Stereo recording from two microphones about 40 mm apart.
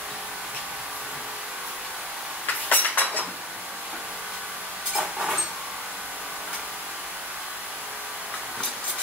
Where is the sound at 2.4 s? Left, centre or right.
Left.